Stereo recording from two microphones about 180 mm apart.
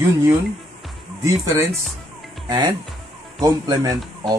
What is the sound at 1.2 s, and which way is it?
Speech, 15° right (ahead or behind).